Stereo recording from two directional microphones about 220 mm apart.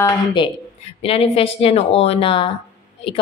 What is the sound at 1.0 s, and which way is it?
A woman's voice, 25° left (ahead or behind).